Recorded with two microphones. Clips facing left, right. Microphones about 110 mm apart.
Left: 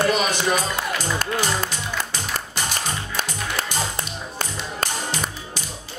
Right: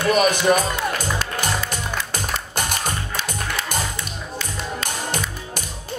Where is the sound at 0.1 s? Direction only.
50° right (ahead or behind).